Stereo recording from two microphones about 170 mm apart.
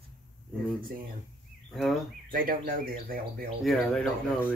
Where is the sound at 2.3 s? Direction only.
55° right (ahead or behind).